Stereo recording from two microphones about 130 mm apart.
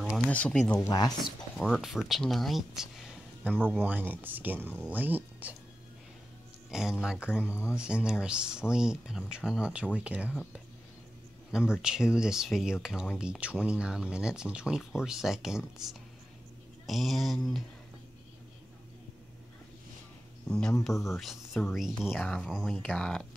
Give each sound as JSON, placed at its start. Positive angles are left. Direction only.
{"t": 0.3, "sound": "speech", "side_deg": 10}
{"t": 0.9, "sound": "speech", "side_deg": 30}
{"t": 1.6, "sound": "speech", "side_deg": -5}
{"t": 6.7, "sound": "speech", "side_deg": -5}
{"t": 7.4, "sound": "speech", "side_deg": 20}
{"t": 7.7, "sound": "speech", "side_deg": -5}
{"t": 11.5, "sound": "speech", "side_deg": -5}
{"t": 20.4, "sound": "speech", "side_deg": 5}